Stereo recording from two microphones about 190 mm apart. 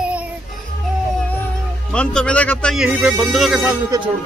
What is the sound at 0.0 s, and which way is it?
Music, 5° right (ahead or behind).